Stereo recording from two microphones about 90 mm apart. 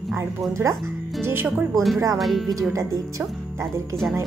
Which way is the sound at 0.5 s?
35° right (ahead or behind).